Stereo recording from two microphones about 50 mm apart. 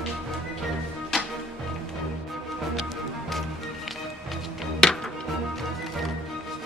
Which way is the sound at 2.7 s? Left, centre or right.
Centre.